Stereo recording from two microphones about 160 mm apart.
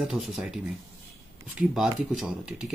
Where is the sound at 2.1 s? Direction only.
5° right (ahead or behind).